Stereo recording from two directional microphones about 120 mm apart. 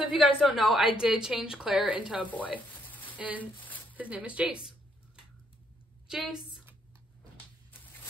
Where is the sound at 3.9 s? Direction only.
10° right (ahead or behind).